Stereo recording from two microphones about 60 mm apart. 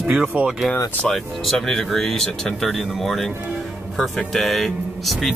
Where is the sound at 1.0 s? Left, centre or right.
Centre.